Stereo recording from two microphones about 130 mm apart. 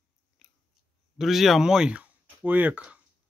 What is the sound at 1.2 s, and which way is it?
Speech, centre (ahead or behind).